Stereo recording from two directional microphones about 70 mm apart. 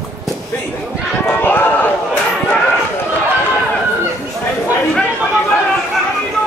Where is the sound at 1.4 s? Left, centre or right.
Left.